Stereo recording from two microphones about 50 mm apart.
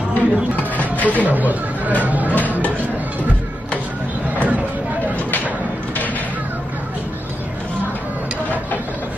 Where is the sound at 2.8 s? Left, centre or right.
Right.